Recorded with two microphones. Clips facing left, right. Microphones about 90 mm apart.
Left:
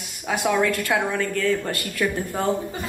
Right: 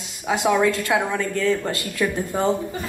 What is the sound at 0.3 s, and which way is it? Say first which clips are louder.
A woman's voice: right 2 dB; 20° right (ahead or behind).